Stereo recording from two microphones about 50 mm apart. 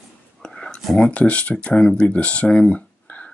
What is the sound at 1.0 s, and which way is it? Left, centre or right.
Speech, left.